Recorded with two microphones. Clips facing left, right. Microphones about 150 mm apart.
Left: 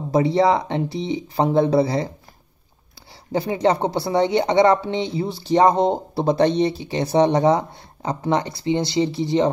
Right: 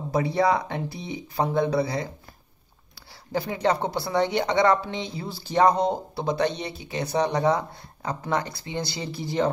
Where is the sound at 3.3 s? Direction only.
25° left (ahead or behind).